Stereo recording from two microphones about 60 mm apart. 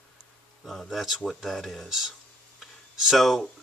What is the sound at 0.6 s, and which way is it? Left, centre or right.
A man's voice, centre.